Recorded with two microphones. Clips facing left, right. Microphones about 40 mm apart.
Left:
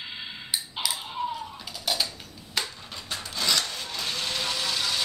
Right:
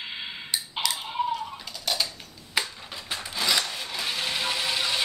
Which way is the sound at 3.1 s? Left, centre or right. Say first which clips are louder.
Right 1 dB; centre.